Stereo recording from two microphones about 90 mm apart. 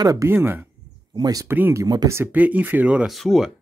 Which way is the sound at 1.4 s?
25° right (ahead or behind).